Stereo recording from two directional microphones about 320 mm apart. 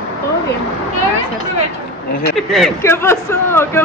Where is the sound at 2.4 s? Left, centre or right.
Centre.